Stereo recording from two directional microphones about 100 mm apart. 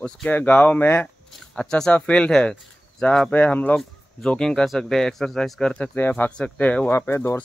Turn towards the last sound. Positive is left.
turn(degrees=25)  # may be behind; listen again after turning